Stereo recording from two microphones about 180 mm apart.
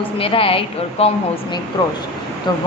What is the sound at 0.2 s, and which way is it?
A woman's voice, 30° left (ahead or behind).